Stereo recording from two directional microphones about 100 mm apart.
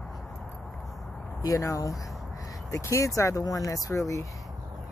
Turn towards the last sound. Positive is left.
turn(degrees=35)  # may be behind; listen again after turning